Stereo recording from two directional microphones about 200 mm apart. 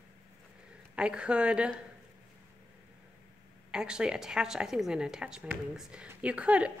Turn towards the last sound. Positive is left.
turn(degrees=-5)  # may be behind; listen again after turning